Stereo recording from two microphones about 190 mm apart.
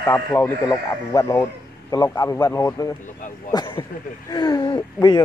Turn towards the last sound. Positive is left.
turn(degrees=20)  # may be behind; listen again after turning